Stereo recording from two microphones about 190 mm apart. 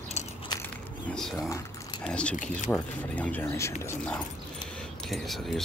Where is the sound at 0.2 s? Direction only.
35° left (ahead or behind).